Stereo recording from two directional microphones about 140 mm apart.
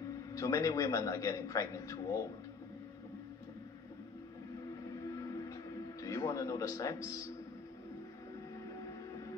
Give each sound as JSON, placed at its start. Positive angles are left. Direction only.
{"t": 0.3, "sound": "a man's voice", "side_deg": 25}
{"t": 5.2, "sound": "music", "side_deg": 25}
{"t": 6.0, "sound": "a man's voice", "side_deg": 25}